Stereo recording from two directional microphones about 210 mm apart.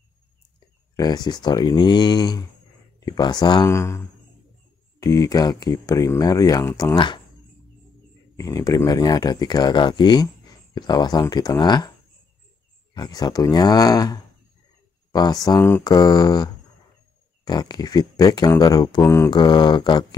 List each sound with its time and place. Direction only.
0.9 s speech: 20° left (ahead or behind)
5.0 s speech: 15° left (ahead or behind)
8.4 s speech: 15° left (ahead or behind)
12.9 s speech: 20° left (ahead or behind)
17.5 s speech: 20° left (ahead or behind)